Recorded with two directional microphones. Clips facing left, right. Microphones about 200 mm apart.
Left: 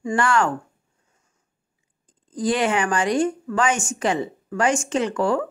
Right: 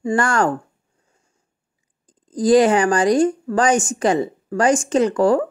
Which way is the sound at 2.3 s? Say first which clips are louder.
Right 8 dB; 40° right (ahead or behind).